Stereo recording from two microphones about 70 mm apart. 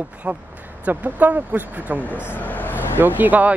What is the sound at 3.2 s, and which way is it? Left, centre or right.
Speech, right.